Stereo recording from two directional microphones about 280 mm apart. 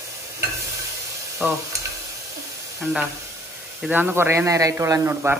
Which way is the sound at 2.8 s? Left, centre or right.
Centre.